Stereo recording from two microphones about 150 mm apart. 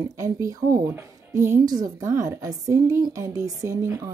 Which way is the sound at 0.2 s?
20° right (ahead or behind).